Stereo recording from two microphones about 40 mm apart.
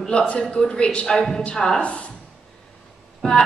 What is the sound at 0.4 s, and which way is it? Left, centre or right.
A woman's voice, left.